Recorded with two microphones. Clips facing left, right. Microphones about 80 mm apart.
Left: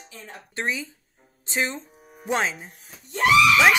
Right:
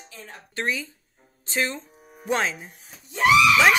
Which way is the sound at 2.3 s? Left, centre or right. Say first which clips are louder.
Even; centre.